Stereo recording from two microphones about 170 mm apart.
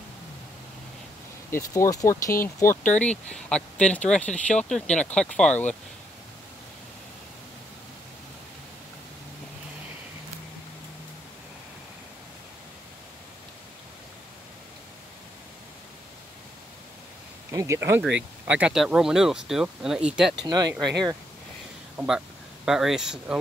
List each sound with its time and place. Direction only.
1.5 s speech: 20° left (ahead or behind)
17.5 s speech: 20° right (ahead or behind)
20.4 s speech: 25° right (ahead or behind)
21.9 s speech: 5° right (ahead or behind)